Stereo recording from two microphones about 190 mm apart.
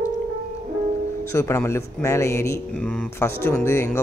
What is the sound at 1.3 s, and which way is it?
Speech, 15° left (ahead or behind).